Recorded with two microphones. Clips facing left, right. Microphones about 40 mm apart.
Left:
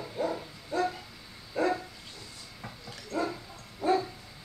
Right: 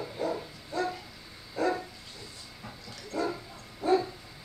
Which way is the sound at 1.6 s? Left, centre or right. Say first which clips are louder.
Left 1 dB; left.